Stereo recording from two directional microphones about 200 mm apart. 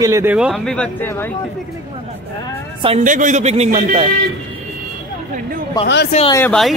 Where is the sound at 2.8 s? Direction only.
35° right (ahead or behind).